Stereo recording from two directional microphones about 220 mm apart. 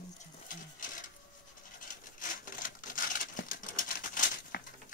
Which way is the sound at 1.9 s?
35° left (ahead or behind).